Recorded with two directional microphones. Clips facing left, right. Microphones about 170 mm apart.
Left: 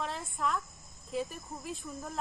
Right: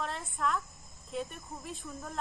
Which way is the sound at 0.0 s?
Centre (ahead or behind).